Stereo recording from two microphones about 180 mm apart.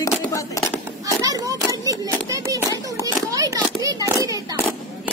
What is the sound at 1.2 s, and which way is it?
A man's voice, 20° right (ahead or behind).